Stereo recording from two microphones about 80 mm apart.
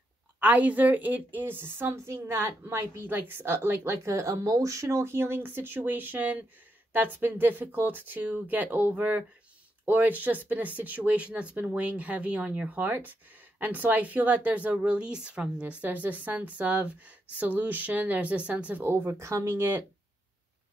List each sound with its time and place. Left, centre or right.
0.4 s a woman's voice: centre
18.9 s speech: right